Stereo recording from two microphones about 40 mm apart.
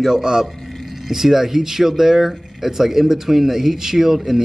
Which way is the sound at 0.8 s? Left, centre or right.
Centre.